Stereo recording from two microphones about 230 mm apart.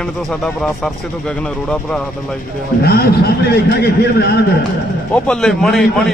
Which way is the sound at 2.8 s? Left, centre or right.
Left.